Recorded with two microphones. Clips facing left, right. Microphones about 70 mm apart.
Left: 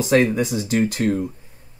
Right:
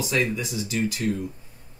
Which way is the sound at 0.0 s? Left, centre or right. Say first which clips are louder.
Left 8 dB; left.